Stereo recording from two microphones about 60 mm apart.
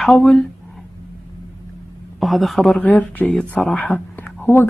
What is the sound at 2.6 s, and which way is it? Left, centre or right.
A woman's voice, left.